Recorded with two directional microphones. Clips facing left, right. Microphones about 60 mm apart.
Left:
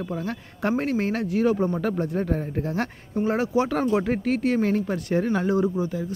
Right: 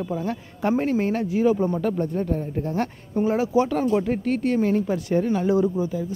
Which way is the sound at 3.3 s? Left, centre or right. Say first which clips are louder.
Right 2 dB; left.